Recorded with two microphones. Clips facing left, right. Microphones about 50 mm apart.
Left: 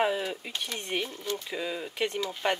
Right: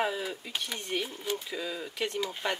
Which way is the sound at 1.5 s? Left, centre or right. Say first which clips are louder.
Left 2 dB; centre.